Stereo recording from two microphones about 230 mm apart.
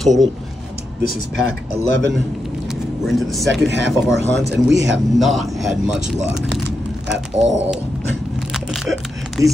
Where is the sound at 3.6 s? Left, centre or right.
Right.